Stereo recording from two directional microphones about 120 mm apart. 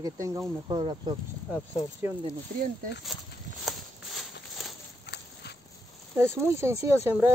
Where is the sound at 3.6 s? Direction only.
Centre (ahead or behind).